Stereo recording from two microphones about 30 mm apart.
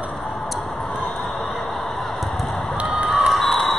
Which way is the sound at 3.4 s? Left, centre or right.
Centre.